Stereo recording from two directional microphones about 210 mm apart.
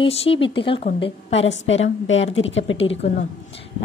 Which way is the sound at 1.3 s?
60° left (ahead or behind).